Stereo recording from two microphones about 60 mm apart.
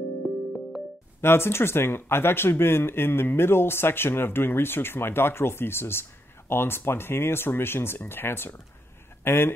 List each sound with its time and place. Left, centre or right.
1.2 s speech: left